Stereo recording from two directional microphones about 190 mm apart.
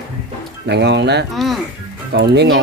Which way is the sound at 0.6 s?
65° right (ahead or behind).